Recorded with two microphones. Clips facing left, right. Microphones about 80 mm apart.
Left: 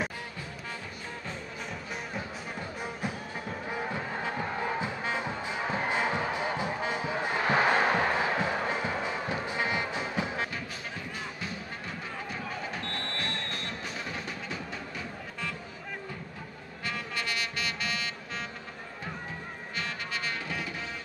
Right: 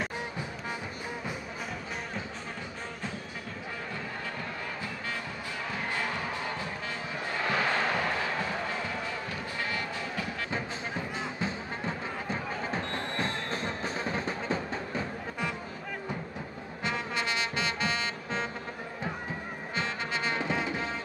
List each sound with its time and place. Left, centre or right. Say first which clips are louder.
3.7 s music: left 5 dB; left
10.5 s music: right 4 dB; right
16.8 s brass instrument: right 3 dB; right
19.7 s music: right 3 dB; right